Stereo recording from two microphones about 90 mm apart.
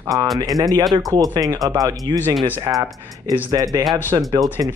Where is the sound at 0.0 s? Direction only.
40° right (ahead or behind).